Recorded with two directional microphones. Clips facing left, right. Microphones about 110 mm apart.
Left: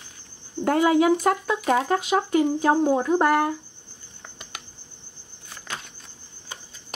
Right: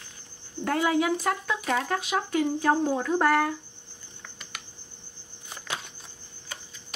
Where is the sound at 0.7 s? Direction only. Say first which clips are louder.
Left 6 dB; 25° left (ahead or behind).